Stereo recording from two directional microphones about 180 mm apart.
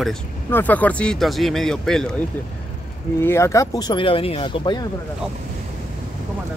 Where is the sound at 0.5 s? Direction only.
10° left (ahead or behind).